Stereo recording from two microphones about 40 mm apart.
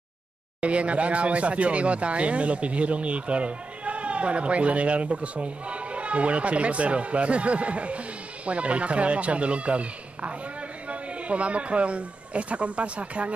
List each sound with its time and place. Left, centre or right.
0.6 s speech: right